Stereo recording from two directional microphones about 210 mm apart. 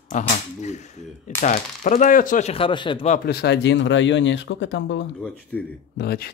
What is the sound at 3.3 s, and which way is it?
Speech, 50° left (ahead or behind).